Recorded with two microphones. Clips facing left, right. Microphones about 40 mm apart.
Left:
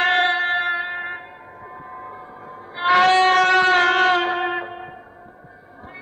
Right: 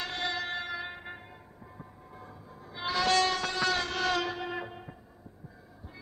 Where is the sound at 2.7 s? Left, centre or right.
Left.